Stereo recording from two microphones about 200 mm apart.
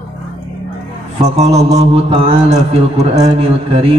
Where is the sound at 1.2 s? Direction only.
35° right (ahead or behind).